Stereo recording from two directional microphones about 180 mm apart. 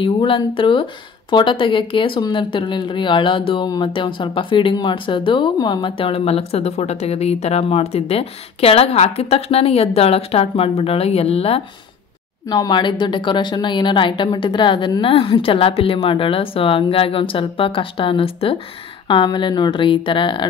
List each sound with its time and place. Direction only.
0.0 s a woman's voice: 30° left (ahead or behind)